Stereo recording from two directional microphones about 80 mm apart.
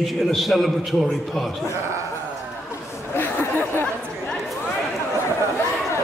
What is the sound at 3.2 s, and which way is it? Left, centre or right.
Chatter, left.